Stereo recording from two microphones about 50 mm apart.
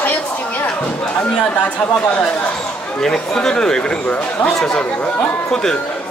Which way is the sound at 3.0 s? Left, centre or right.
Centre.